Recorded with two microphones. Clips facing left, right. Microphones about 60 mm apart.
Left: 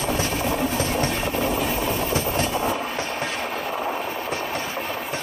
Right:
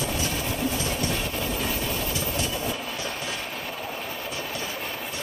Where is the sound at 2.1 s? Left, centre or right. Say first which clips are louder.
Left 6 dB; left.